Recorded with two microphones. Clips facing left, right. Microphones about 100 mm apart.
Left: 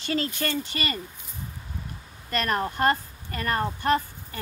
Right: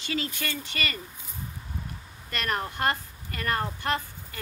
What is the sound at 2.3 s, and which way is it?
Speech, 35° left (ahead or behind).